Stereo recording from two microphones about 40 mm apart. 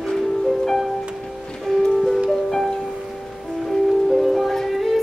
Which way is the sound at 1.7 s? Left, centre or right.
Centre.